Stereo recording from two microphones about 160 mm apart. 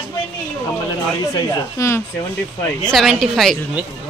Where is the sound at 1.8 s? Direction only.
20° left (ahead or behind).